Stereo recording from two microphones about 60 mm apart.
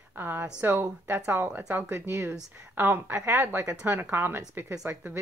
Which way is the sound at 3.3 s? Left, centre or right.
Right.